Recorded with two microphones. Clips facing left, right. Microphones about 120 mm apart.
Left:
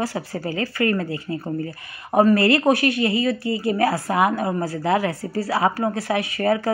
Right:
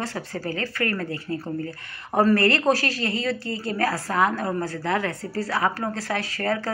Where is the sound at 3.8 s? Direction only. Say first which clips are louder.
Left 1 dB; 25° left (ahead or behind).